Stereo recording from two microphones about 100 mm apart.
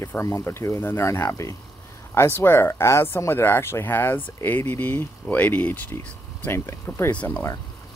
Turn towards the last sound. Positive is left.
turn(degrees=15)  # may be behind; listen again after turning